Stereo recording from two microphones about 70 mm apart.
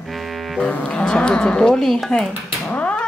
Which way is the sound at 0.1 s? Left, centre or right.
Centre.